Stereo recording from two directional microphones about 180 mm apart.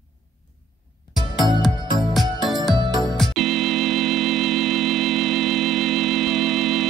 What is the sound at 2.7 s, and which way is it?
Music, 25° right (ahead or behind).